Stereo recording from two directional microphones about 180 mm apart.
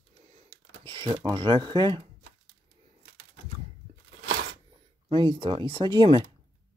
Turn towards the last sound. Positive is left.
turn(degrees=-25)  # may be behind; listen again after turning